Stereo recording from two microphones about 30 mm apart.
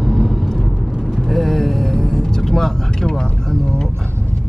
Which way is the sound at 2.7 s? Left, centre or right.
Left.